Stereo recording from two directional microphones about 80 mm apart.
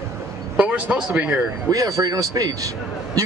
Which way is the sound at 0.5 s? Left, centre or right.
Centre.